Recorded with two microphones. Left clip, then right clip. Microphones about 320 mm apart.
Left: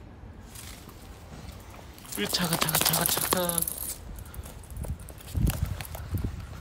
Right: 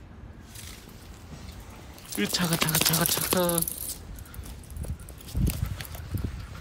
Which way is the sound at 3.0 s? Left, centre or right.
Centre.